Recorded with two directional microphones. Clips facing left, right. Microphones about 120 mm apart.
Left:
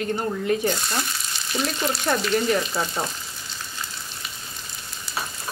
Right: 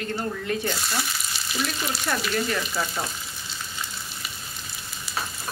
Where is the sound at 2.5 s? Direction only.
25° left (ahead or behind).